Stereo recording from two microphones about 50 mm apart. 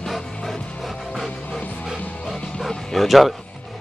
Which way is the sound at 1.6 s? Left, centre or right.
Left.